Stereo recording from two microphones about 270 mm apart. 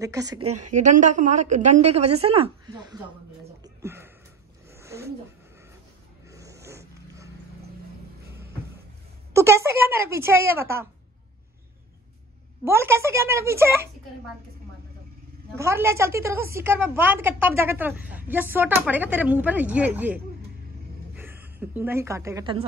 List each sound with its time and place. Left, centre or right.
0.0 s a woman's voice: centre
3.6 s a sound: centre
6.3 s a sound: centre
9.3 s a woman's voice: centre
12.6 s a woman's voice: centre
15.5 s a woman's voice: centre